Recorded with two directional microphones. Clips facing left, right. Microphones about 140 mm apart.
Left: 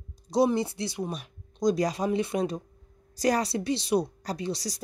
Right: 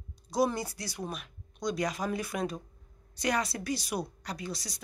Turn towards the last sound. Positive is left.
turn(degrees=35)  # may be behind; listen again after turning